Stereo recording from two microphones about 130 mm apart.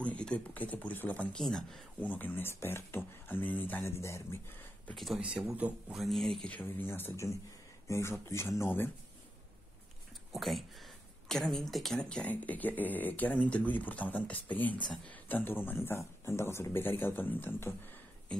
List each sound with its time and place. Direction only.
0.0 s speech: 10° left (ahead or behind)
4.9 s speech: centre (ahead or behind)
5.9 s speech: centre (ahead or behind); by 8.9 s 20° left (ahead or behind)
10.3 s speech: centre (ahead or behind); by 17.7 s 15° left (ahead or behind)